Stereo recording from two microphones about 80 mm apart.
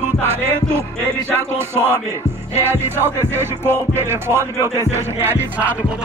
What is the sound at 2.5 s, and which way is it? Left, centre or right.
Music, right.